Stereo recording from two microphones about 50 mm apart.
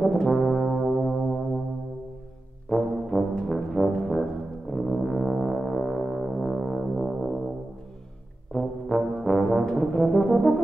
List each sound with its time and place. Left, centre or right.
0.0 s brass instrument: centre
0.4 s music: centre
2.7 s brass instrument: centre
8.5 s brass instrument: centre